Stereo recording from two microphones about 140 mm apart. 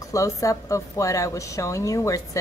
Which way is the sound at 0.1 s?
25° left (ahead or behind).